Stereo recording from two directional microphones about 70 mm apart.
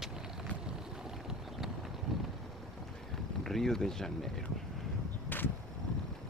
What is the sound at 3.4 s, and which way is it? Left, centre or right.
Speech, centre.